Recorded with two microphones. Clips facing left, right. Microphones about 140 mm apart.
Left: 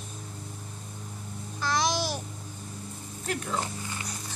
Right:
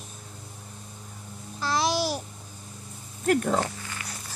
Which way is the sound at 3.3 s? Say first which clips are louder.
Right 8 dB; 55° right (ahead or behind).